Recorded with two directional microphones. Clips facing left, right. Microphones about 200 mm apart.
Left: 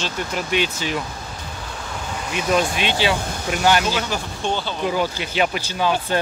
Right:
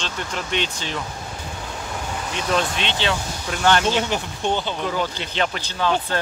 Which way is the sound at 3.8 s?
30° right (ahead or behind).